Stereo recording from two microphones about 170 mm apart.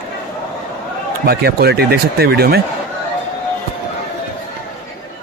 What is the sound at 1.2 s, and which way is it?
Speech, 70° right (ahead or behind).